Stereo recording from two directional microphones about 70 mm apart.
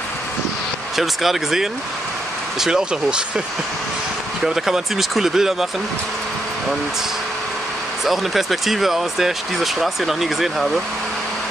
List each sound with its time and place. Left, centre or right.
0.9 s speech: centre
4.6 s speech: centre
8.0 s speech: centre